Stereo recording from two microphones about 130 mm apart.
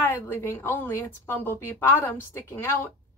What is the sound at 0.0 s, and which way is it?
A woman's voice, 15° left (ahead or behind).